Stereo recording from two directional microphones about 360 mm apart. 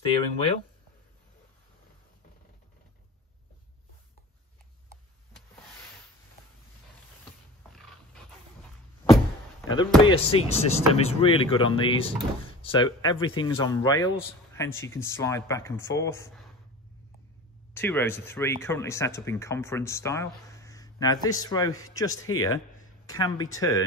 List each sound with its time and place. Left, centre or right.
0.0 s speech: centre
7.7 s dog: centre
10.0 s speech: centre
17.7 s speech: centre